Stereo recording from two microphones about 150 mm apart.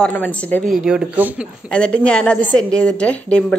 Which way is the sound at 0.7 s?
5° right (ahead or behind).